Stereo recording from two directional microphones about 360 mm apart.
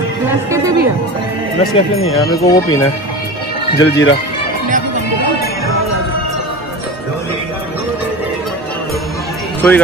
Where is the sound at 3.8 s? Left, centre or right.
Left.